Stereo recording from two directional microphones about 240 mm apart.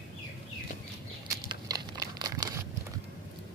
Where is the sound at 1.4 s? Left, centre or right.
Centre.